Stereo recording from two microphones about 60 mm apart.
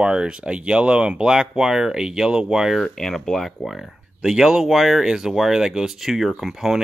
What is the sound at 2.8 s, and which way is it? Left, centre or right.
Speech, centre.